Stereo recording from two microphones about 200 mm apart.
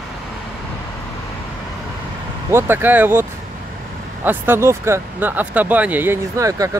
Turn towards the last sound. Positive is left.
turn(degrees=-15)  # may be behind; listen again after turning